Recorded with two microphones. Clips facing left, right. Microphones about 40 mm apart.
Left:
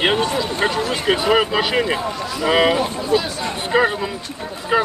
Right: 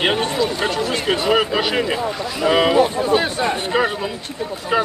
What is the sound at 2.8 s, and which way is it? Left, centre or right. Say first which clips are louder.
Speech: right 3 dB; right.